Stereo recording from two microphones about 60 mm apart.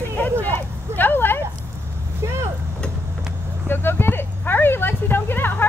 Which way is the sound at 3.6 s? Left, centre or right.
Left.